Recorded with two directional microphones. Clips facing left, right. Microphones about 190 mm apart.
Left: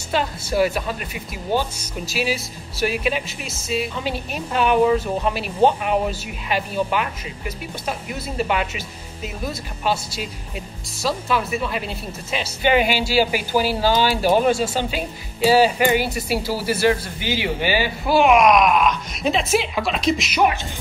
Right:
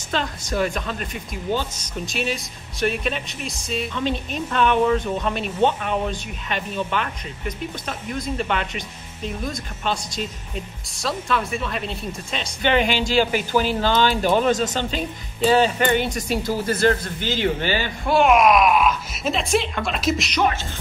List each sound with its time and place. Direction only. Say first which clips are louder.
0.1 s speech: left 3 dB; 10° left (ahead or behind)